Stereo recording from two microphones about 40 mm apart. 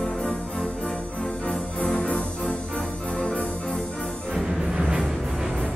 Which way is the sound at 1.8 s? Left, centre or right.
Left.